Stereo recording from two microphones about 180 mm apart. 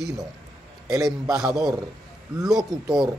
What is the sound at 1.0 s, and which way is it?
Speech, centre (ahead or behind).